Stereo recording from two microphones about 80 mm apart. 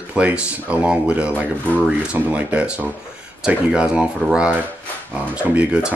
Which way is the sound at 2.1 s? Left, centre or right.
Centre.